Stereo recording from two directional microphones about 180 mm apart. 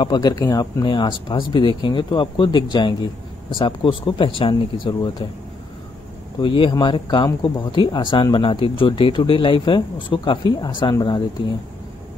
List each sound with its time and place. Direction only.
0.0 s speech: 25° left (ahead or behind)
6.4 s speech: 25° left (ahead or behind)